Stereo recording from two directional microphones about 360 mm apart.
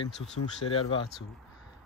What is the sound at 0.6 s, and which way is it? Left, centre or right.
Speech, left.